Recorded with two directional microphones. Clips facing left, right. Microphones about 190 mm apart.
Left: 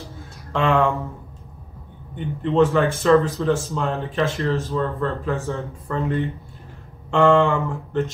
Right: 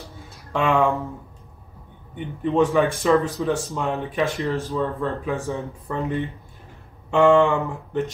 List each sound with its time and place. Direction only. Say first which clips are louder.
0.5 s speech: left 1 dB; 15° right (ahead or behind)
2.1 s speech: left 2 dB; 10° right (ahead or behind)